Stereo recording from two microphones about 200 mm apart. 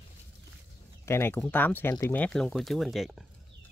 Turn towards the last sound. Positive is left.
turn(degrees=0)  # may be behind; listen again after turning